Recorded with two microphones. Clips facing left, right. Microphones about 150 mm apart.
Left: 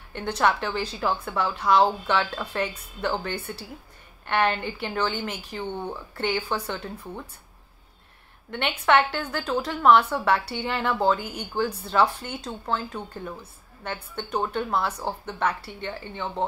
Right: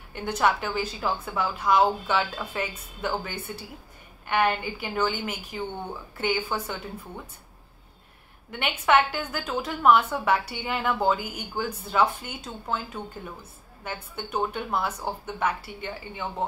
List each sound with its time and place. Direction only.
0.4 s a woman's voice: 5° right (ahead or behind)
8.5 s a woman's voice: 5° right (ahead or behind)